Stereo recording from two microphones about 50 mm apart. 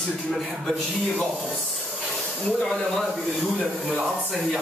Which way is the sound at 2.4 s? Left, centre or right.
Centre.